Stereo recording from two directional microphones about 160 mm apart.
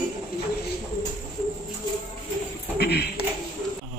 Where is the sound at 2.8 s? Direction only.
90° left.